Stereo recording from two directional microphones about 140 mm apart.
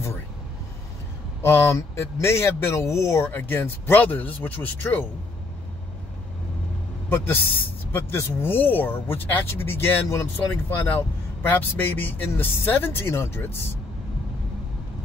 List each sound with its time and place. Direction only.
1.4 s speech: 20° left (ahead or behind)
7.9 s speech: 15° left (ahead or behind)